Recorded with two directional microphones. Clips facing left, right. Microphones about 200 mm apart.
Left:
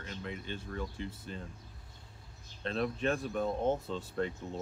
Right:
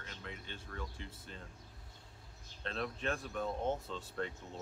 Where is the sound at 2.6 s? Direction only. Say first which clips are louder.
Left 6 dB; 15° left (ahead or behind).